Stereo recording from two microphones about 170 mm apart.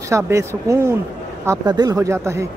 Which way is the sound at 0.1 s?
15° right (ahead or behind).